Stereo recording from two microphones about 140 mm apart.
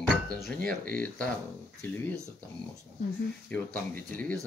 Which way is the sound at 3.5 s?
10° left (ahead or behind).